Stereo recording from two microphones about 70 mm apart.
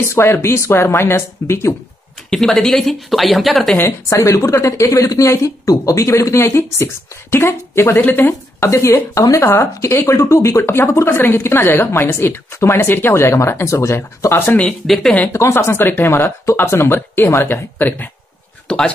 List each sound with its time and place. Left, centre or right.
0.1 s speech: left
2.2 s speech: centre
4.1 s speech: left
6.0 s speech: left
8.5 s speech: left
11.9 s speech: left
14.6 s speech: centre
15.3 s speech: left
17.7 s speech: left
18.7 s speech: centre